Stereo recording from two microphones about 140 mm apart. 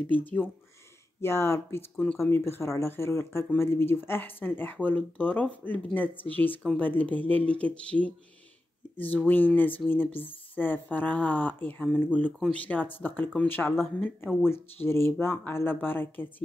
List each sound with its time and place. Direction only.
0.0 s speech: 10° left (ahead or behind)
12.3 s speech: 5° right (ahead or behind)
12.5 s speech: 10° left (ahead or behind)